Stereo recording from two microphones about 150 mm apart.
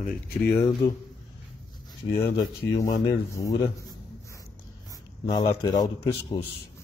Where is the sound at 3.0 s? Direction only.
20° left (ahead or behind).